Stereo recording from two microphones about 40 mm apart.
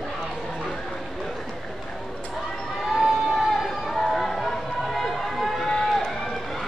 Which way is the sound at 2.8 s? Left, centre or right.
Centre.